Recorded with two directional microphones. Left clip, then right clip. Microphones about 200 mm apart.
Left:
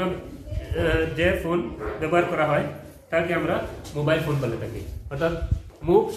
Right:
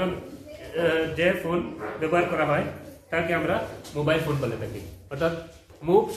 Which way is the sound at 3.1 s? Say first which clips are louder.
Left 2 dB; centre (ahead or behind).